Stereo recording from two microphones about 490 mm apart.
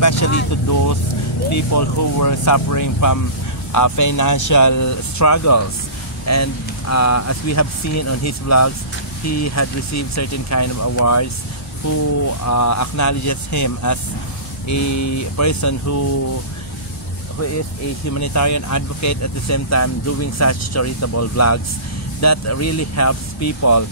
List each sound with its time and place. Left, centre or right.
0.0 s speech: left
12.4 s speech: left
18.1 s speech: left